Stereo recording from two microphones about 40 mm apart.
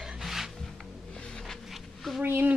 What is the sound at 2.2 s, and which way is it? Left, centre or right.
Speech, right.